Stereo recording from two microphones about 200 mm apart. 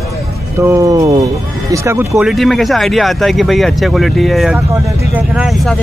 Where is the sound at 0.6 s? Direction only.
15° right (ahead or behind).